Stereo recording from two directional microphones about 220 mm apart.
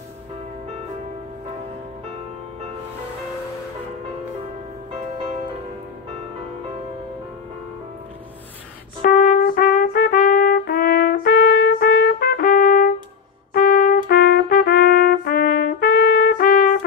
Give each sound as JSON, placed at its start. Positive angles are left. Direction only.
{"t": 9.0, "sound": "trumpet", "side_deg": 40}